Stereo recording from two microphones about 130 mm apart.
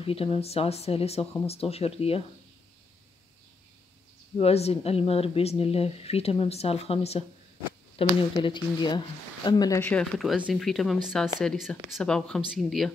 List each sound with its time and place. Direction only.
0.0 s a woman's voice: 50° left (ahead or behind)
4.4 s a woman's voice: 50° left (ahead or behind)
8.2 s speech: 40° left (ahead or behind)
9.8 s speech: 10° left (ahead or behind)
10.3 s speech: 10° right (ahead or behind)